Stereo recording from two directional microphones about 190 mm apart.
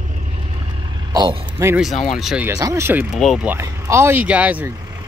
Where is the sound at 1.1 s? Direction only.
20° right (ahead or behind).